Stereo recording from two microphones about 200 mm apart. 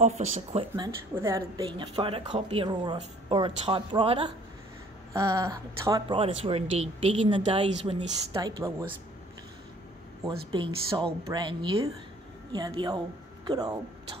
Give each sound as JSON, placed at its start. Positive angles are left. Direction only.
{"t": 0.0, "sound": "speech", "side_deg": -35}
{"t": 0.7, "sound": "speech", "side_deg": -15}
{"t": 5.1, "sound": "speech", "side_deg": -15}
{"t": 10.5, "sound": "speech", "side_deg": -25}